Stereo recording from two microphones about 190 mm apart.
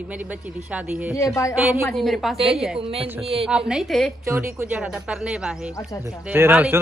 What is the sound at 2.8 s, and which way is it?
Speech, 30° right (ahead or behind).